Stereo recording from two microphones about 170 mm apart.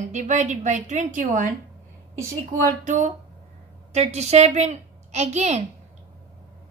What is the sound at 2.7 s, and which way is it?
A woman's voice, 50° right (ahead or behind).